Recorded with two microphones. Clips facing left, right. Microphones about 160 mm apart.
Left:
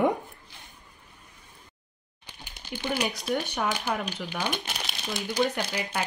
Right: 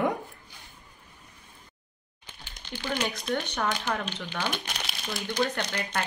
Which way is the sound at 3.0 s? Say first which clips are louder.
Left 1 dB; centre (ahead or behind).